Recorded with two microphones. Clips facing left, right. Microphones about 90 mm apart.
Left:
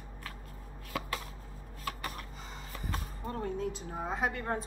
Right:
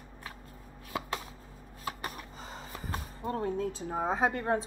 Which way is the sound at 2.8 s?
40° right (ahead or behind).